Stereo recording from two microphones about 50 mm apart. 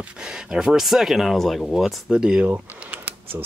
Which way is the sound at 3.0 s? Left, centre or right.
Right.